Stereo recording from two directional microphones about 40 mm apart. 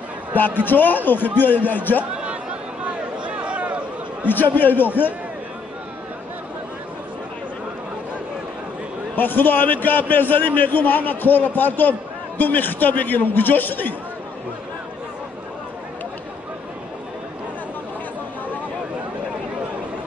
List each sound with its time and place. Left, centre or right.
0.7 s a man's voice: left
2.8 s a sound: right
4.3 s a man's voice: left
9.1 s a man's voice: left